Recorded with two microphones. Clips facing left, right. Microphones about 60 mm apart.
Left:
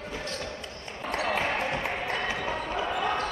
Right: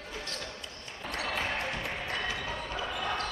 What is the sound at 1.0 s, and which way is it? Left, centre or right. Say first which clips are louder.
Basketball bounce: left 5 dB; left.